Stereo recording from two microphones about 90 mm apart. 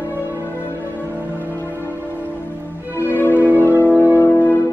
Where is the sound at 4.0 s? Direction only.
30° left (ahead or behind).